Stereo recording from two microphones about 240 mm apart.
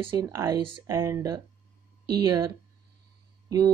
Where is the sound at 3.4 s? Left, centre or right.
Centre.